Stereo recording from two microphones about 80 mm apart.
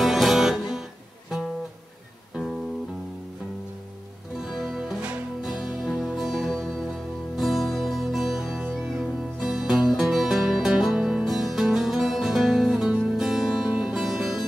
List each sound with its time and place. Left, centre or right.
0.0 s music: centre
2.3 s music: centre
4.4 s music: centre